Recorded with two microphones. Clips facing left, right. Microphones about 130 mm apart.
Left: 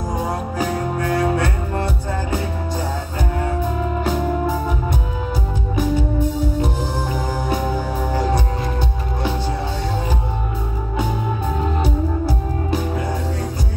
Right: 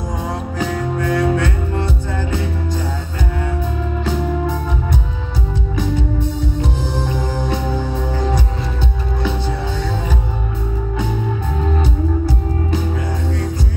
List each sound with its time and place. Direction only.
1.1 s music: 30° left (ahead or behind)